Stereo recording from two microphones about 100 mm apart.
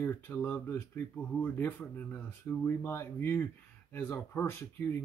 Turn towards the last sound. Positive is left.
turn(degrees=25)  # may be behind; listen again after turning